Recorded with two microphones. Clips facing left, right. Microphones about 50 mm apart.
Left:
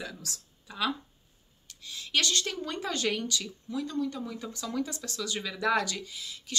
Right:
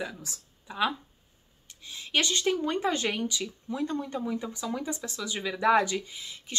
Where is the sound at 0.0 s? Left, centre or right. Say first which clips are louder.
Right 4 dB; right.